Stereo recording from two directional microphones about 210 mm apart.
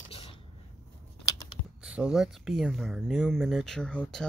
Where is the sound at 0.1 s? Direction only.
25° left (ahead or behind).